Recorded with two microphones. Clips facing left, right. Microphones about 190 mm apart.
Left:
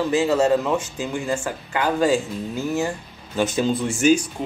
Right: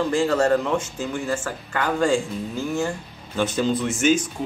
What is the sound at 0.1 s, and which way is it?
Speech, 5° left (ahead or behind).